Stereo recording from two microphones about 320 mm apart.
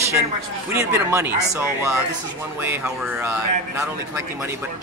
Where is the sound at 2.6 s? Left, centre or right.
Centre.